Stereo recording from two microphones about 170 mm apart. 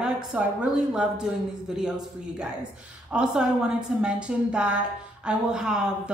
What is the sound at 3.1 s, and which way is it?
A woman's voice, 5° right (ahead or behind).